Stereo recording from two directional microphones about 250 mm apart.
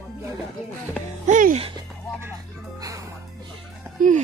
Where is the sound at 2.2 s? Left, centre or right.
Centre.